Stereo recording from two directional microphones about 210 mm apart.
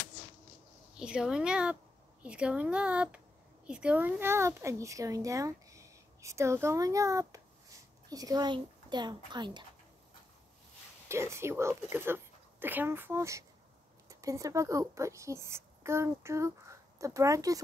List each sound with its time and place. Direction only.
0.9 s a woman's voice: 5° right (ahead or behind); by 9.7 s 20° right (ahead or behind)
11.1 s speech: 10° right (ahead or behind)